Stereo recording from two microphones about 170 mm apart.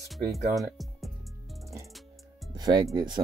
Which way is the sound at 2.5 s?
25° right (ahead or behind).